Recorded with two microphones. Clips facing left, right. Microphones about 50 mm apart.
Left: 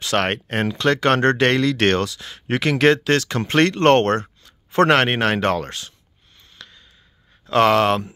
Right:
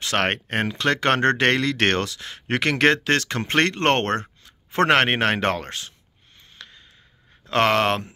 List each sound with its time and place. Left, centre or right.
0.0 s speech: right
2.5 s speech: right
6.6 s a sound: right
7.4 s speech: right